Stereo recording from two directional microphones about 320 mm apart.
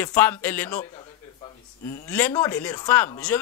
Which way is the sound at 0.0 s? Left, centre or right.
Centre.